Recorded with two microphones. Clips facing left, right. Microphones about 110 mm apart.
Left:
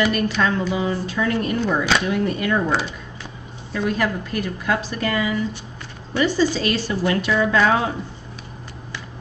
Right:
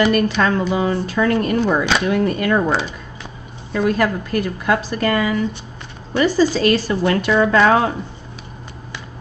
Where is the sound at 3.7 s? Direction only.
55° right (ahead or behind).